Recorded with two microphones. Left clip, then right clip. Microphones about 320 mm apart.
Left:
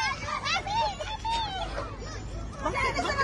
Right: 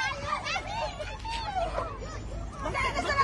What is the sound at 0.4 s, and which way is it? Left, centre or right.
Hubbub, centre.